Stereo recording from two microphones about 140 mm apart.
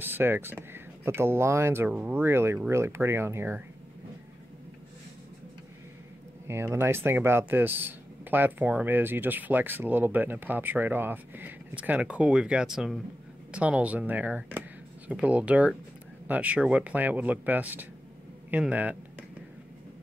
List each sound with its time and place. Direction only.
0.0 s speech: 15° right (ahead or behind)
6.4 s speech: 20° right (ahead or behind)